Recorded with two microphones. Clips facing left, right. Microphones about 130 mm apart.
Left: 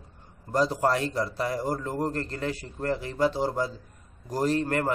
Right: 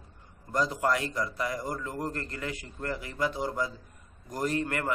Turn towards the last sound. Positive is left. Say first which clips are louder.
# left 4 dB
turn(degrees=35)  # may be behind; listen again after turning